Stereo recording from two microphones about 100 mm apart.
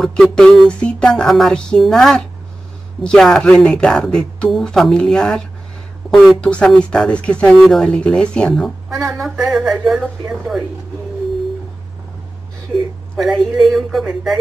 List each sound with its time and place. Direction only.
0.0 s speech: 5° left (ahead or behind)
7.5 s speech: centre (ahead or behind)
8.6 s speech: 5° right (ahead or behind)
13.2 s speech: centre (ahead or behind)